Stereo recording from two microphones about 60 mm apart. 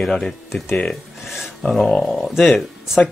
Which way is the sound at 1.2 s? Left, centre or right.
Centre.